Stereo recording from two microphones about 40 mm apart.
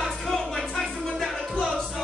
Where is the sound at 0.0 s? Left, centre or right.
Centre.